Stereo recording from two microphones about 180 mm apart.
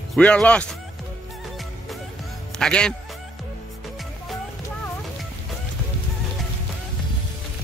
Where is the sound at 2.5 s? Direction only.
5° left (ahead or behind).